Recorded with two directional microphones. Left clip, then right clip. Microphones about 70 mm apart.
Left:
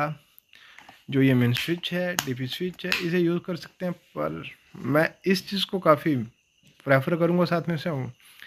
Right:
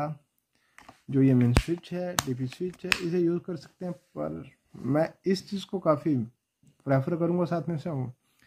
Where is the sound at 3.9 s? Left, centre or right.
Centre.